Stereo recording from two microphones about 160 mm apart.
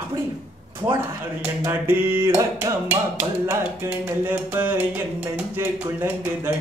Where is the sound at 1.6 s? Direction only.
15° right (ahead or behind).